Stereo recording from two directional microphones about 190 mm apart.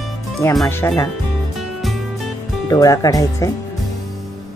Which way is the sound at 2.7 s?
20° left (ahead or behind).